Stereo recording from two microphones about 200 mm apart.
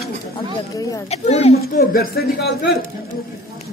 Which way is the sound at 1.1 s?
30° left (ahead or behind).